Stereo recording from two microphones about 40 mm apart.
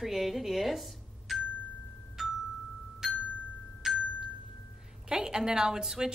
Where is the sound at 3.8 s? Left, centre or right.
Centre.